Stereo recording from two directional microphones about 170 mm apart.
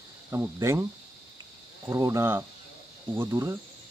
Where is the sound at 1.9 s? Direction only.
15° right (ahead or behind).